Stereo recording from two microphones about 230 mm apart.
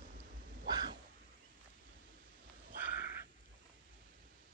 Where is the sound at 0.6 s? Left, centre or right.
Centre.